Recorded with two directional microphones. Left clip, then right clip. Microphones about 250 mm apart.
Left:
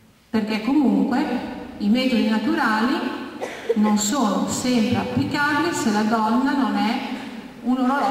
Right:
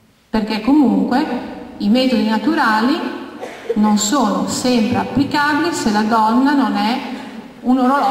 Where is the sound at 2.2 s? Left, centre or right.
Centre.